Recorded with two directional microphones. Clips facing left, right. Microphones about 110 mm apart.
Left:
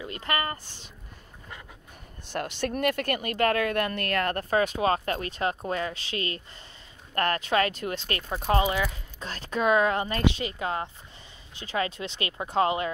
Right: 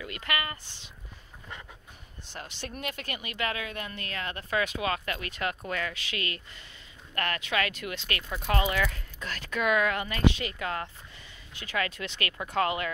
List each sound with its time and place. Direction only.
0.0 s speech: 30° left (ahead or behind)
2.3 s a woman's voice: 60° left (ahead or behind)
4.5 s speech: 35° left (ahead or behind)
8.7 s speech: 15° left (ahead or behind)
9.2 s speech: 30° left (ahead or behind)